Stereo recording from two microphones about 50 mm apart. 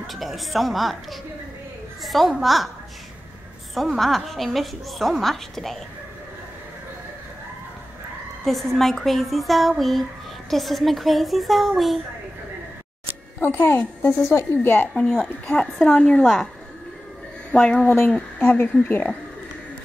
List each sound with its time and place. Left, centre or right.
0.0 s a woman's voice: centre
3.7 s a woman's voice: centre
8.5 s a woman's voice: centre
13.4 s a woman's voice: left
15.0 s a woman's voice: centre
16.2 s a woman's voice: centre
17.5 s speech: centre
18.4 s a woman's voice: left